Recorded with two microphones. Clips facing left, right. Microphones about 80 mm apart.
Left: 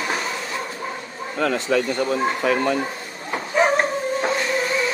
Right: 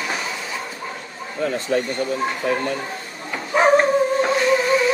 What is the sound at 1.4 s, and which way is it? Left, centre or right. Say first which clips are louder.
Speech: left 1 dB; left.